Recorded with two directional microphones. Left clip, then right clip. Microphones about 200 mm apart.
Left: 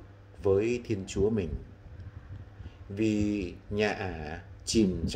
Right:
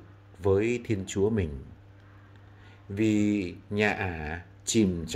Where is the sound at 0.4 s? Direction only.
30° right (ahead or behind).